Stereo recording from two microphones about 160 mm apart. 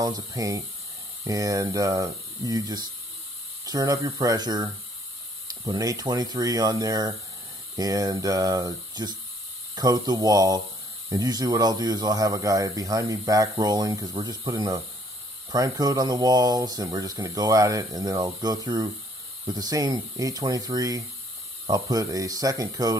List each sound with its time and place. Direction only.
0.0 s speech: 20° right (ahead or behind)